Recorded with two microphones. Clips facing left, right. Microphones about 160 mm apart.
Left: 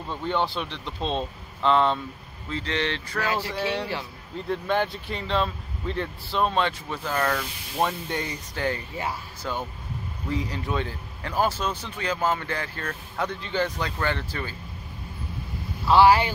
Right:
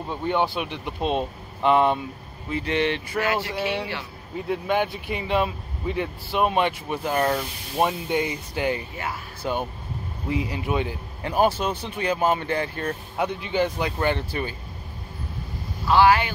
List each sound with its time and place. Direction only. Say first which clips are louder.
0.1 s speech: right 2 dB; 10° right (ahead or behind)
15.9 s speech: left 1 dB; 30° left (ahead or behind)